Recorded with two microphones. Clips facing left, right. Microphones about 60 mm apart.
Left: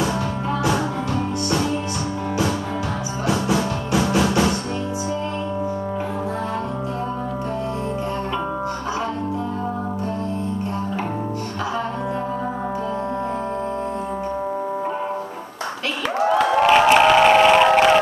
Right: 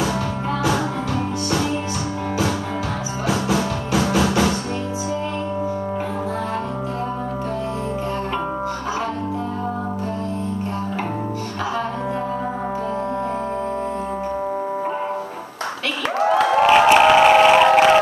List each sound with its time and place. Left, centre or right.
1.1 s music: right
3.5 s music: right
16.2 s a sound: right
16.5 s crowd: centre